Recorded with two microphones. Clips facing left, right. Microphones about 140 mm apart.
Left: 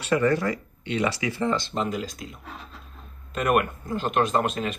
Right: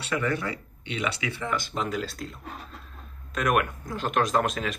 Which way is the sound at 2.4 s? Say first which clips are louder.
Right 1 dB; 45° right (ahead or behind).